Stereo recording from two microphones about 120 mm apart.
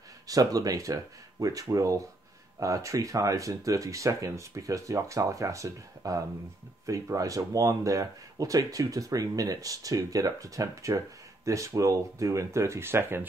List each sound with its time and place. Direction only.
0.3 s speech: 30° right (ahead or behind)